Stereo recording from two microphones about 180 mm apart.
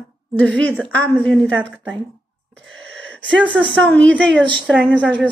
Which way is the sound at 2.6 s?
90° right.